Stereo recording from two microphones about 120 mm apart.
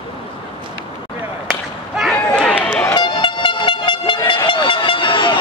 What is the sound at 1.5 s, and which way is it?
Whip, centre (ahead or behind).